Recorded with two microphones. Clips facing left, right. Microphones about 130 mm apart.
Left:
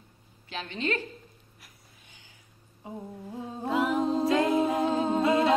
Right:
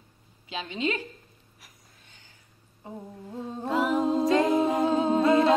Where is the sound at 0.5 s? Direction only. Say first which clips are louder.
Right 2 dB; 15° right (ahead or behind).